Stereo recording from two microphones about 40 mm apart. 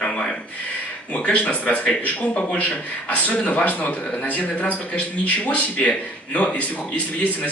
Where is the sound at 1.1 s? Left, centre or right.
Left.